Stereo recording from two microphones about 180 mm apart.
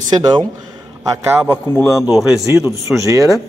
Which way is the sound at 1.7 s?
15° left (ahead or behind).